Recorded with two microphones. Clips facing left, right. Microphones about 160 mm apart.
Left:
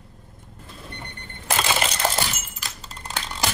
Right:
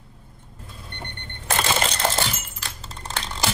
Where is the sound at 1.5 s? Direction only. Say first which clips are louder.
Right 1 dB; 10° left (ahead or behind).